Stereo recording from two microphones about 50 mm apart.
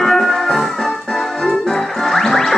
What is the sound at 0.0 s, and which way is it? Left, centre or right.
Music, centre.